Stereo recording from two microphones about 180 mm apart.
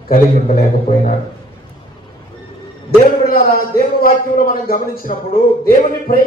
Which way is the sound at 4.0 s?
50° left (ahead or behind).